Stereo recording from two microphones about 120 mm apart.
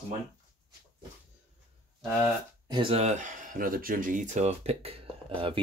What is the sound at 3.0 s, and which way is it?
Speech, 80° right.